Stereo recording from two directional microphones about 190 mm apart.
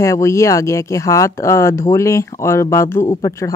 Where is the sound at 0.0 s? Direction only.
15° left (ahead or behind).